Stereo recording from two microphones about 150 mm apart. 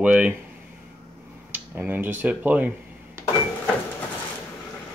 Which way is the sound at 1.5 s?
10° right (ahead or behind).